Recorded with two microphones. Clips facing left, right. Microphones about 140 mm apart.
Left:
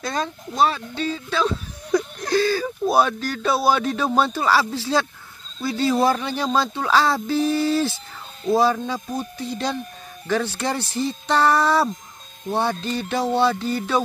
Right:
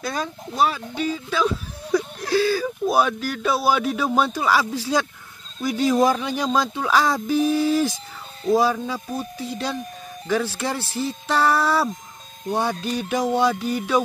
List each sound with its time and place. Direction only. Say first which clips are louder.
0.0 s speech: left 1 dB; 10° right (ahead or behind)
3.0 s music: left 1 dB; 5° right (ahead or behind)
8.7 s speech: left 1 dB; 5° right (ahead or behind)
10.2 s music: even; 10° right (ahead or behind)